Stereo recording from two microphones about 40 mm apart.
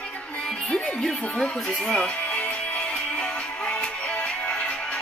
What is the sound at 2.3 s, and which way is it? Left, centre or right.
Music, left.